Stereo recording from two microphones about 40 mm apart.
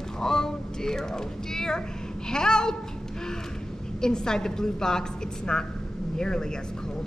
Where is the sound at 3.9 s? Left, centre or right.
Centre.